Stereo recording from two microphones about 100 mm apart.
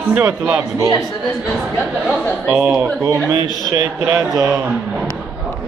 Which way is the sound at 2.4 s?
15° right (ahead or behind).